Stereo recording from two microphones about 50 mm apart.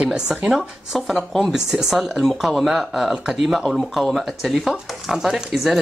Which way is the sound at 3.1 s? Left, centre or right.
Centre.